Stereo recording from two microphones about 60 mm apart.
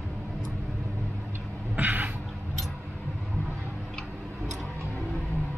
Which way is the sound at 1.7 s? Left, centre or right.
Right.